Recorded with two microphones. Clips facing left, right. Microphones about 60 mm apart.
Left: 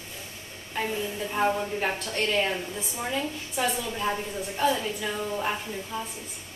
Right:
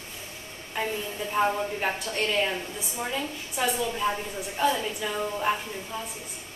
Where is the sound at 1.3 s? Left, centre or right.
Centre.